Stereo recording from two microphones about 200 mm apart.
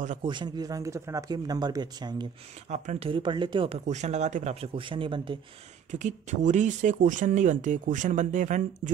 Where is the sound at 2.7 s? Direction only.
30° right (ahead or behind).